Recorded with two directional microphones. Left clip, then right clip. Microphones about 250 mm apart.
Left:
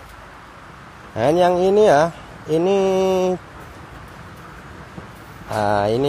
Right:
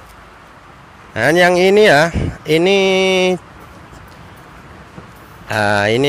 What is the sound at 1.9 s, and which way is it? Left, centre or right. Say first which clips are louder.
Speech: right 4 dB; right.